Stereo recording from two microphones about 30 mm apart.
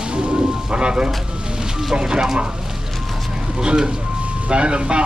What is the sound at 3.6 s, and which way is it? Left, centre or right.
Speech, right.